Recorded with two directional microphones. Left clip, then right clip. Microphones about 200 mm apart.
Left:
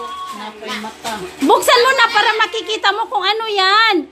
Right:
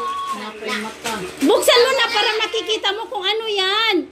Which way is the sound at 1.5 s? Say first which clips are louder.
Left 3 dB; 30° left (ahead or behind).